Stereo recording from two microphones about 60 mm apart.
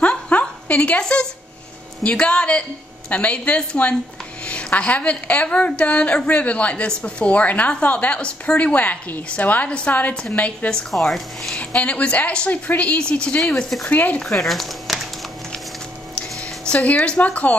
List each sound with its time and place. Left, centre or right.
0.0 s a sound: left
2.0 s a woman's voice: left
8.7 s a woman's voice: left
10.9 s speech: centre
11.5 s a woman's voice: left
13.4 s speech: centre
13.8 s a woman's voice: left
14.2 s speech: centre
16.2 s a sound: centre
16.8 s a woman's voice: centre